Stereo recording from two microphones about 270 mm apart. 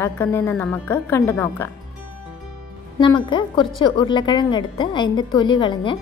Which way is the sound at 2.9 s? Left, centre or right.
Centre.